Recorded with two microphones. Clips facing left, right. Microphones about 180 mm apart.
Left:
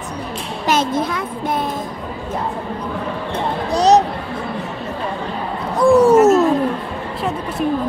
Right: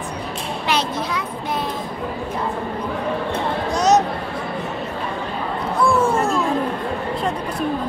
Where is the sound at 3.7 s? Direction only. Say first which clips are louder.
Left 4 dB; 35° left (ahead or behind).